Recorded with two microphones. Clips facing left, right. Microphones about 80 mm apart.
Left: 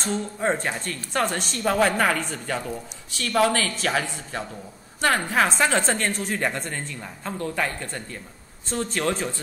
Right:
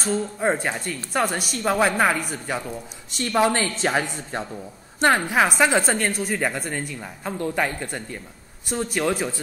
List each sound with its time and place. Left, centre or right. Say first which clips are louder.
0.0 s a woman's voice: right 2 dB; centre
3.2 s a man's voice: right 1 dB; right